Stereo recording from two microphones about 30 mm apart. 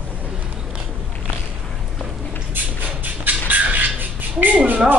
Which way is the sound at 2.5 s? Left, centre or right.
Right.